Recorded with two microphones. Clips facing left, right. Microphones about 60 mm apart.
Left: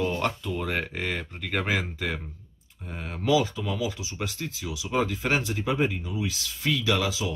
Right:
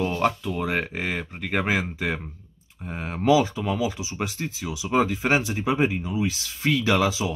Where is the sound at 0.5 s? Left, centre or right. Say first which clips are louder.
Right 3 dB; centre.